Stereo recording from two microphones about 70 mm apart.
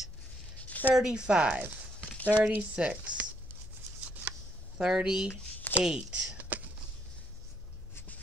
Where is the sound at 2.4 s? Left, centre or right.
Centre.